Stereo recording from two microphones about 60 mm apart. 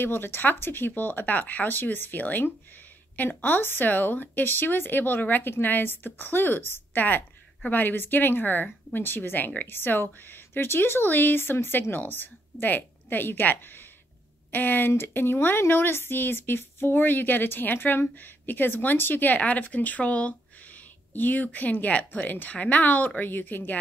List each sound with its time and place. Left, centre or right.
0.0 s speech: left